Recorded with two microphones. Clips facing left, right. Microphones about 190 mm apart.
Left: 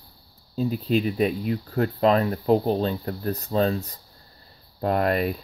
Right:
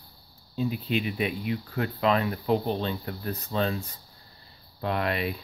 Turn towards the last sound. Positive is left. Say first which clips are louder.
# left 6 dB
turn(degrees=45)  # may be behind; listen again after turning